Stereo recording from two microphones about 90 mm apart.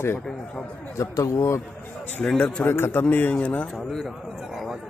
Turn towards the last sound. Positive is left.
turn(degrees=0)  # may be behind; listen again after turning